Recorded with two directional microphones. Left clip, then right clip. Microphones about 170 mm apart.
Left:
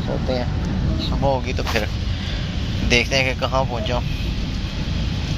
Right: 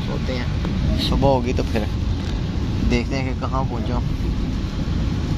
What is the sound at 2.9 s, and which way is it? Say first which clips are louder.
Speech: left 8 dB; centre (ahead or behind).